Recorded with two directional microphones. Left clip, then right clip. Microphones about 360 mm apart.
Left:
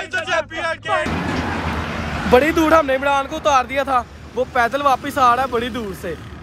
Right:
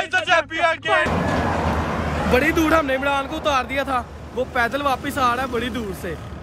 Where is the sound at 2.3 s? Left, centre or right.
Centre.